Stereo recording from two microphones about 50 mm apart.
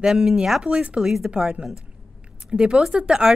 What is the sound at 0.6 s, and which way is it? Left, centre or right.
Speech, right.